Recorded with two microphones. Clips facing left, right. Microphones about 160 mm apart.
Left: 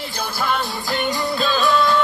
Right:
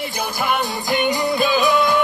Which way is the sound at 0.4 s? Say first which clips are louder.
Right 1 dB; 15° right (ahead or behind).